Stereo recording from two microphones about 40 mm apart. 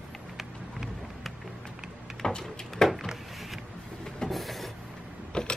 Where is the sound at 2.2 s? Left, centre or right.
Centre.